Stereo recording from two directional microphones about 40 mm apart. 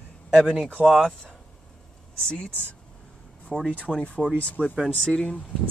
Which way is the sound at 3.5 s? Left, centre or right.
Centre.